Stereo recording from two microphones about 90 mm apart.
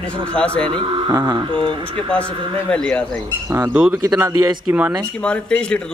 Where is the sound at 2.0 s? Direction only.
15° left (ahead or behind).